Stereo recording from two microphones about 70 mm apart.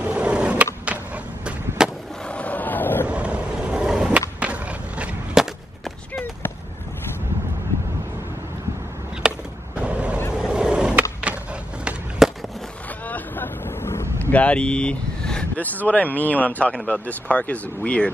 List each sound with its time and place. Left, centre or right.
0.0 s skateboard: centre
0.8 s a sound: centre
2.2 s vehicle: centre
3.1 s vehicle: centre
4.4 s skateboard: centre
9.2 s skateboard: centre
9.8 s vehicle: centre
10.3 s skateboard: centre
13.0 s vehicle: left
14.3 s vehicle: centre
15.5 s speech: left